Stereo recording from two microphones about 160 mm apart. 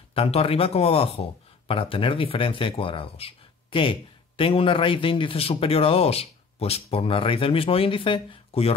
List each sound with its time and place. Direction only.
0.1 s speech: 35° left (ahead or behind)